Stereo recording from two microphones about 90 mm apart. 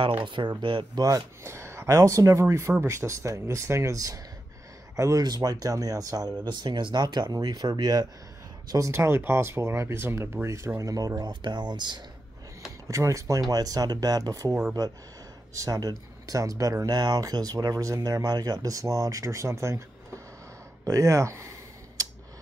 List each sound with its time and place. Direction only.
0.2 s speech: 65° right (ahead or behind)
0.9 s speech: 40° right (ahead or behind)
6.4 s speech: 55° right (ahead or behind)
8.7 s speech: 35° right (ahead or behind)
11.4 s speech: 55° right (ahead or behind)
12.8 s speech: 35° right (ahead or behind)
15.5 s speech: 40° right (ahead or behind)
20.8 s a sound: 35° right (ahead or behind)